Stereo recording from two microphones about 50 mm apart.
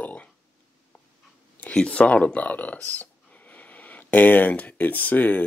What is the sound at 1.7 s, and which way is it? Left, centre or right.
Speech, left.